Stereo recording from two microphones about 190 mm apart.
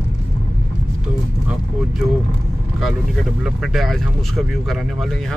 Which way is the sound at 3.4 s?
Centre (ahead or behind).